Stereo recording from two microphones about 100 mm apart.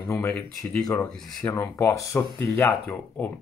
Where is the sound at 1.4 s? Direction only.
30° left (ahead or behind).